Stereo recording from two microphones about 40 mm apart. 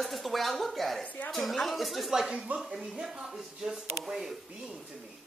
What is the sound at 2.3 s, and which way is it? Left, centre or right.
Speech, right.